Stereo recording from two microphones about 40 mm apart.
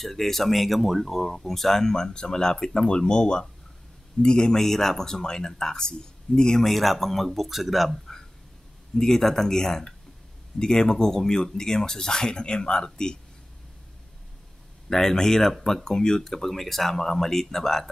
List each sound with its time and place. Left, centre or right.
0.0 s speech: centre
6.6 s speech: centre
8.9 s speech: centre
14.9 s speech: centre